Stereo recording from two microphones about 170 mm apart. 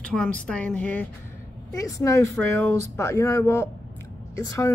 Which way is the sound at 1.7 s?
20° left (ahead or behind).